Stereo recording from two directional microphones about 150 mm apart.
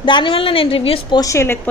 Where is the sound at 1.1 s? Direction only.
20° left (ahead or behind).